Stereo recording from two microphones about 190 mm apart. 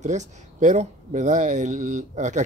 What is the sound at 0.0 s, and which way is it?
Speech, 40° right (ahead or behind).